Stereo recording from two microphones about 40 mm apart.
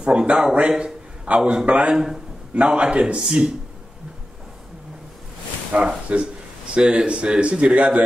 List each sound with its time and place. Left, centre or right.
0.0 s a man's voice: right
2.5 s a man's voice: right
5.7 s a man's voice: right
6.7 s a man's voice: right